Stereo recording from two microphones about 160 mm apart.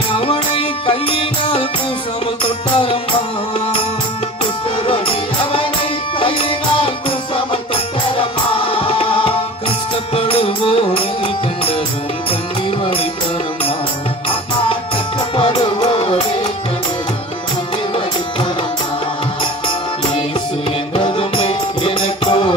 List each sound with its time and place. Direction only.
0.1 s music: 35° left (ahead or behind)
6.1 s music: 35° left (ahead or behind)
7.7 s music: 35° left (ahead or behind)
15.3 s music: 30° left (ahead or behind)
20.9 s music: 35° left (ahead or behind)